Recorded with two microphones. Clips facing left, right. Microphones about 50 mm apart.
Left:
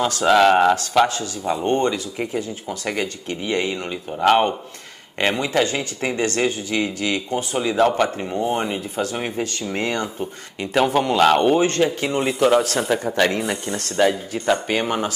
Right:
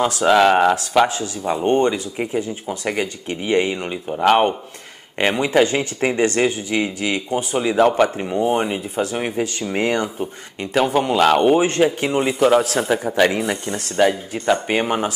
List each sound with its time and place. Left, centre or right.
0.1 s speech: centre
10.6 s speech: centre